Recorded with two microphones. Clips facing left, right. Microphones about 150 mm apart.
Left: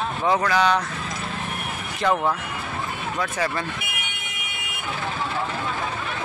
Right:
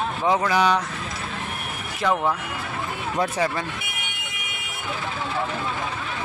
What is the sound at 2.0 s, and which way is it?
Speech, centre (ahead or behind).